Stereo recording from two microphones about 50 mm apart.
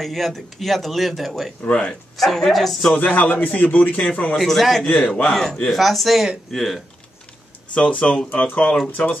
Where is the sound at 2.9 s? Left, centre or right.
Left.